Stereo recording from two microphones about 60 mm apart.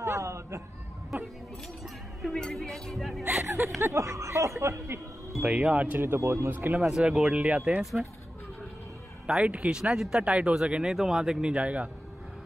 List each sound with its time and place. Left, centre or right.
0.0 s a sound: right
2.2 s speech: centre
3.3 s a sound: right
3.8 s speech: right
5.5 s speech: centre
5.9 s speech: right
6.5 s speech: right
6.8 s speech: centre
7.8 s speech: centre
9.4 s speech: centre